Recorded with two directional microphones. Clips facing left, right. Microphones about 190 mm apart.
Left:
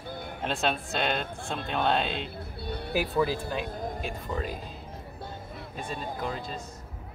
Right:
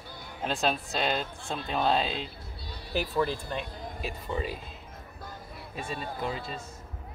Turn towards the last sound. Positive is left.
turn(degrees=-5)  # may be behind; listen again after turning